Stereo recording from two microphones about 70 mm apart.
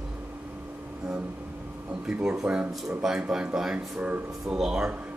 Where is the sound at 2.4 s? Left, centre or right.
Centre.